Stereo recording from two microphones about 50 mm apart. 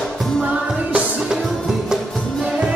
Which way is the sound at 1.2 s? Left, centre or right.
Centre.